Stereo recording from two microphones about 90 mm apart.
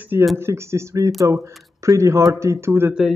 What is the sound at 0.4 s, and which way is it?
Speech, 30° right (ahead or behind).